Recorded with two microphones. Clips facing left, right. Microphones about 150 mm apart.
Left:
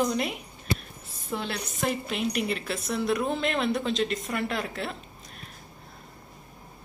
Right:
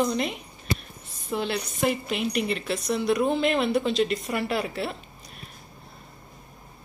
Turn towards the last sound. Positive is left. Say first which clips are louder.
# right 4 dB
turn(degrees=-5)  # may be behind; listen again after turning